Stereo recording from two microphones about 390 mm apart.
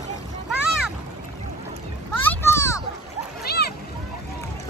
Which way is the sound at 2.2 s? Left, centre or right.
Centre.